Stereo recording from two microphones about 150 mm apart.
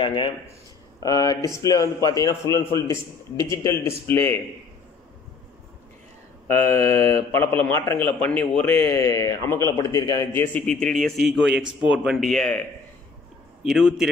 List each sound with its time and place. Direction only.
0.0 s a man's voice: 35° left (ahead or behind); by 4.4 s 15° left (ahead or behind)
6.4 s mantra: 15° left (ahead or behind)
8.8 s a man's voice: 20° left (ahead or behind)
10.3 s a man's voice: 10° left (ahead or behind)
13.7 s a man's voice: 5° right (ahead or behind)